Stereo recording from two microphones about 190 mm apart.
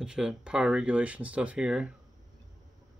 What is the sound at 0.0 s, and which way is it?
Speech, 5° right (ahead or behind).